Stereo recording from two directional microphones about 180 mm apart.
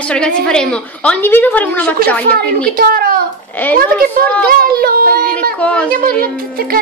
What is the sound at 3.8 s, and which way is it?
Child singing, 55° right (ahead or behind).